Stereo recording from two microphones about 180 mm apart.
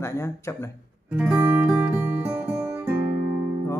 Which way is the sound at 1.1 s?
10° right (ahead or behind).